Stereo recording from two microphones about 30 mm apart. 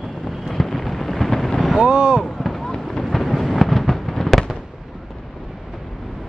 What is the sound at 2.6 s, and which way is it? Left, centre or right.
Fireworks, centre.